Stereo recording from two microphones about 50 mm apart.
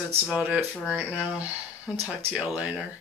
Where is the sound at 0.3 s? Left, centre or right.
Right.